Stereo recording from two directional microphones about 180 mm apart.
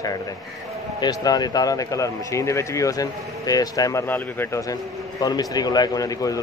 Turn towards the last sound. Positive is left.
turn(degrees=20)  # may be behind; listen again after turning